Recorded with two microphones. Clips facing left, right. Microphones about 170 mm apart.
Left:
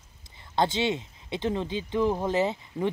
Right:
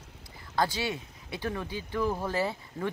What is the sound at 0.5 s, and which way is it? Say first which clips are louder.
Speech: left 4 dB; 25° left (ahead or behind).